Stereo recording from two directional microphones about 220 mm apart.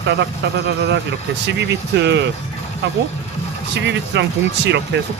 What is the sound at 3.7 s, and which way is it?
Speech, 50° right (ahead or behind).